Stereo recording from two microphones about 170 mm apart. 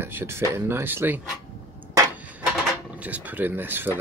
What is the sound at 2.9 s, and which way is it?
Speech, 10° right (ahead or behind).